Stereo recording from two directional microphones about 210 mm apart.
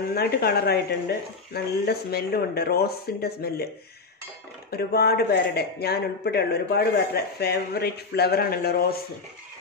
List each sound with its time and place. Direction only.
0.1 s speech: 50° left (ahead or behind)
4.6 s speech: 50° left (ahead or behind)